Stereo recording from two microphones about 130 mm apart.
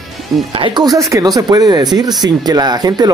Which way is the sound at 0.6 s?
40° right (ahead or behind).